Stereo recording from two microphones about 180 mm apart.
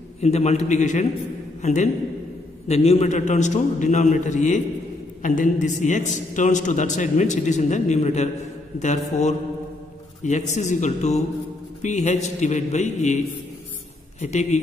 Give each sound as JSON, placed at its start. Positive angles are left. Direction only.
{"t": 0.2, "sound": "a man's voice", "side_deg": 40}
{"t": 14.2, "sound": "a man's voice", "side_deg": 40}